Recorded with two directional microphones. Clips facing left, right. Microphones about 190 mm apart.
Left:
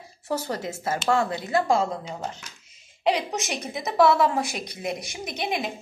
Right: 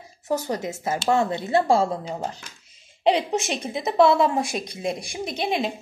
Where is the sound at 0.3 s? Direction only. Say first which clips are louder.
Right 3 dB; 15° right (ahead or behind).